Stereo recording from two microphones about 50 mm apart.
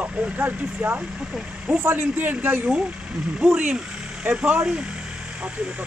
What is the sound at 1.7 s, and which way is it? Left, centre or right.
Speech, right.